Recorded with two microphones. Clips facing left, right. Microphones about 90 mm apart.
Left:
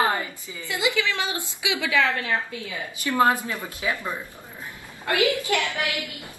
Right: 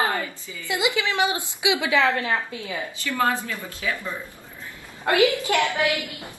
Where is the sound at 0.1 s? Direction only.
20° left (ahead or behind).